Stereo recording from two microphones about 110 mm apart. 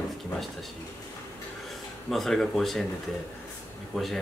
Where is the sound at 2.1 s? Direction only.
5° left (ahead or behind).